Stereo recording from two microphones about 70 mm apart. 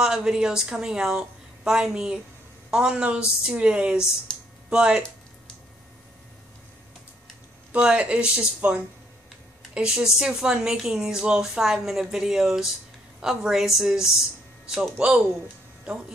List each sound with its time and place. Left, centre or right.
0.0 s speech: centre
7.7 s speech: centre